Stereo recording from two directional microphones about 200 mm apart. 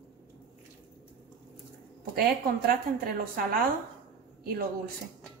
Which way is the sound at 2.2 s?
45° right (ahead or behind).